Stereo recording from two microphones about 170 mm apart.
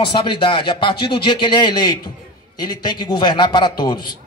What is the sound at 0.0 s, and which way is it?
Speech, 30° left (ahead or behind).